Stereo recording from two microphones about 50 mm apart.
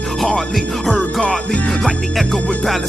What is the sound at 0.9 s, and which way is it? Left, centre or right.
Music, centre.